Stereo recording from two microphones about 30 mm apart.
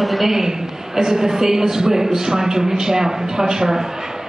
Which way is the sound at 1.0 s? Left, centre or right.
Centre.